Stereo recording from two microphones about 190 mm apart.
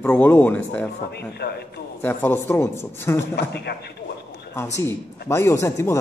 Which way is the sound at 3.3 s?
60° left (ahead or behind).